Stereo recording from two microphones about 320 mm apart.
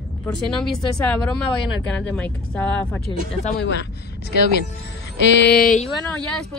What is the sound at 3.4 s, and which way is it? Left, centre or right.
Speech, left.